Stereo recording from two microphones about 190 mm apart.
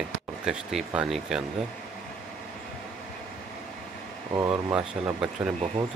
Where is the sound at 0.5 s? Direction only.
5° right (ahead or behind).